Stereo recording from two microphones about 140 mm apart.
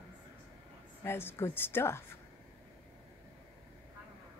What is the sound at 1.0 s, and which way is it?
Speech, 15° left (ahead or behind).